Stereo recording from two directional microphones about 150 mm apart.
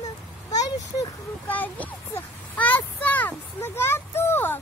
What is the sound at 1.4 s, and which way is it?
A child's voice, 10° left (ahead or behind).